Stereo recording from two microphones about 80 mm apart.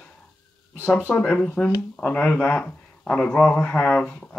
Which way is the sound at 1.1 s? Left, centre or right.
Centre.